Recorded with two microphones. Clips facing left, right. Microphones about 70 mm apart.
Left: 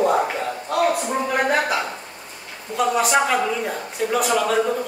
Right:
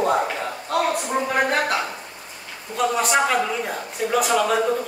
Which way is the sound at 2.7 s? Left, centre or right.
Centre.